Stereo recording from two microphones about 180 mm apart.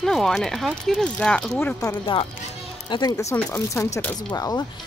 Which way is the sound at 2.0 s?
30° left (ahead or behind).